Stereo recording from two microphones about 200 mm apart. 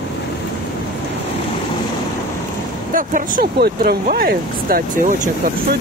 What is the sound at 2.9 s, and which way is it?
Speech, 40° right (ahead or behind).